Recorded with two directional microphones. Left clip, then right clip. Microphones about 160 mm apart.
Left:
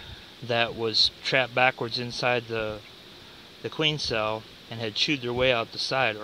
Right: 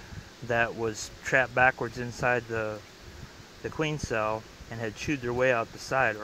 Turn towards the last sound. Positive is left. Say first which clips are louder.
# left 1 dB
turn(degrees=10)  # may be behind; listen again after turning